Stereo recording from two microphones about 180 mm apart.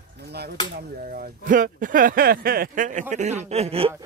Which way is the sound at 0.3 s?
65° right (ahead or behind).